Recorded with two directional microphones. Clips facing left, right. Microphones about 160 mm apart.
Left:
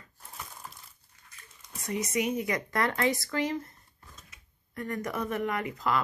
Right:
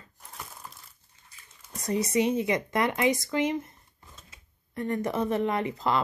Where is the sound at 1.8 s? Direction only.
35° right (ahead or behind).